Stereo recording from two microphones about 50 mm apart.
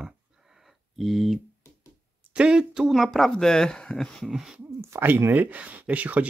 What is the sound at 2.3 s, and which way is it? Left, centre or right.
Speech, centre.